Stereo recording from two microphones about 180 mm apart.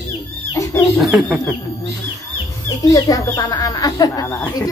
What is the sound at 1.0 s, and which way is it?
Speech, centre (ahead or behind).